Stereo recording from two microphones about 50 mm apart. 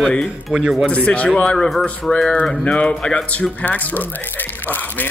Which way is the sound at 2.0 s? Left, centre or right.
Centre.